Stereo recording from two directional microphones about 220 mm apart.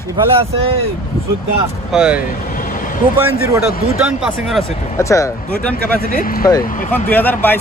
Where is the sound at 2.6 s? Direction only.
40° left (ahead or behind).